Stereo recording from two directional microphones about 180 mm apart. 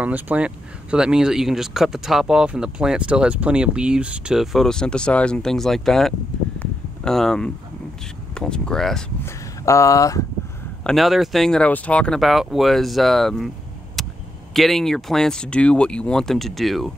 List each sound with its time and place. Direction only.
0.0 s speech: 10° right (ahead or behind)
6.6 s a sound: 5° left (ahead or behind)
8.4 s speech: 5° left (ahead or behind)
9.2 s speech: 15° left (ahead or behind)
10.8 s speech: centre (ahead or behind)
14.0 s a sound: centre (ahead or behind)
14.5 s speech: centre (ahead or behind)